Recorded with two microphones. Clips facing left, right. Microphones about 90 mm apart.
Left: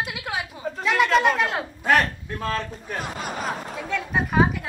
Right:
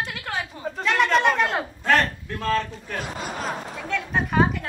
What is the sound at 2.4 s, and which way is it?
Speech, 10° left (ahead or behind).